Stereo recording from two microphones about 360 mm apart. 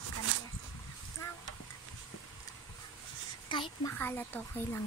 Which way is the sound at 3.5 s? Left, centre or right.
Centre.